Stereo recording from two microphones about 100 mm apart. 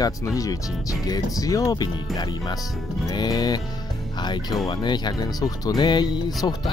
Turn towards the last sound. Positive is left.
turn(degrees=45)  # may be behind; listen again after turning